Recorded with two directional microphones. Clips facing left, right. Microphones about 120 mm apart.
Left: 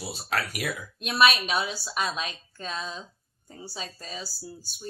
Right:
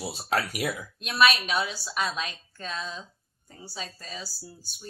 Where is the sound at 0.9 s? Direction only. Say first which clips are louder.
Left 1 dB; 15° left (ahead or behind).